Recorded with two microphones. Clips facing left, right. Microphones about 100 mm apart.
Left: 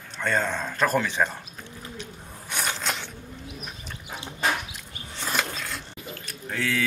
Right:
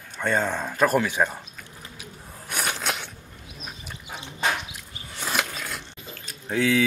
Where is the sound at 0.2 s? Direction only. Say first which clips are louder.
Right 1 dB; 15° right (ahead or behind).